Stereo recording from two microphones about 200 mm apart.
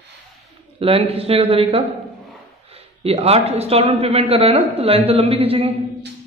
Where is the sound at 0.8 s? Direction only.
30° right (ahead or behind).